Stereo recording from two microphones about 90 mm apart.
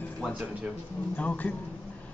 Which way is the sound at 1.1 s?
15° left (ahead or behind).